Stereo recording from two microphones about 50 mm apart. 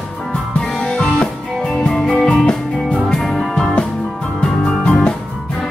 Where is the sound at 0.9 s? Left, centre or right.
Centre.